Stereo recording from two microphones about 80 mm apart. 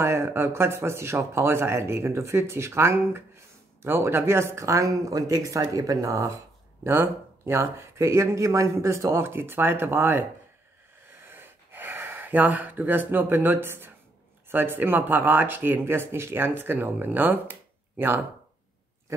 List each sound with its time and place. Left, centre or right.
0.0 s speech: right
11.1 s gasp: right
14.5 s speech: right